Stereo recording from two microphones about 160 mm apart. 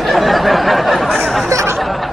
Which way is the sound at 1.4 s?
20° right (ahead or behind).